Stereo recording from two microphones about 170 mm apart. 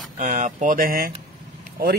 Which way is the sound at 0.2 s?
45° right (ahead or behind).